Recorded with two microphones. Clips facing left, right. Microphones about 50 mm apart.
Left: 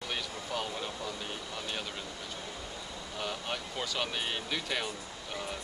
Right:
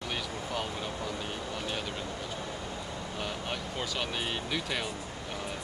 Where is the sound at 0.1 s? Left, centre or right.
Centre.